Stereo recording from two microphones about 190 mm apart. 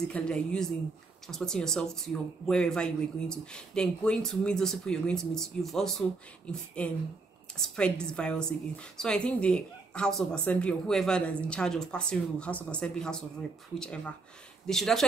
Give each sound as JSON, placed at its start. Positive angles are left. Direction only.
{"t": 0.1, "sound": "a woman's voice", "side_deg": 5}